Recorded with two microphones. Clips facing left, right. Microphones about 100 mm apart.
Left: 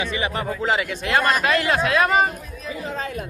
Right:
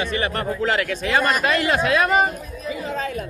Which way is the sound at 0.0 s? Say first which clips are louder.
Right 1 dB; 45° right (ahead or behind).